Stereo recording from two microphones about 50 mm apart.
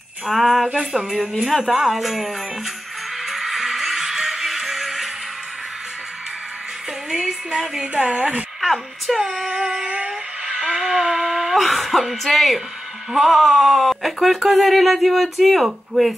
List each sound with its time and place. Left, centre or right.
0.3 s speech: centre
0.7 s speech: centre
1.6 s speech: centre
3.3 s music: centre
7.1 s a woman's voice: centre
7.9 s speech: right
8.5 s a woman's voice: centre
9.2 s a sound: centre
11.0 s speech: centre